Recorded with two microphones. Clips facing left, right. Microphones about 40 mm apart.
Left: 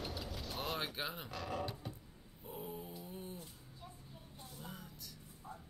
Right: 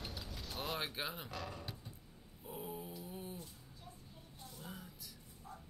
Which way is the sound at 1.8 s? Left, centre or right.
Left.